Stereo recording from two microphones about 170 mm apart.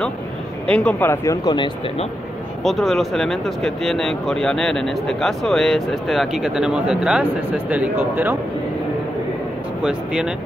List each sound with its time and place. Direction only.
0.7 s speech: 5° left (ahead or behind); by 2.0 s 25° left (ahead or behind)
2.6 s speech: centre (ahead or behind)
9.8 s speech: 5° right (ahead or behind)